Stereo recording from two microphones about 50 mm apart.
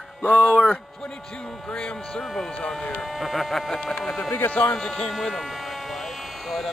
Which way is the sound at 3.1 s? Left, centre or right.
Centre.